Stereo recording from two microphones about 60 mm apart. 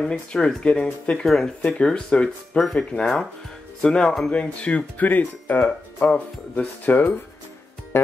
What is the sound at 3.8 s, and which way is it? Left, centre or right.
Speech, centre.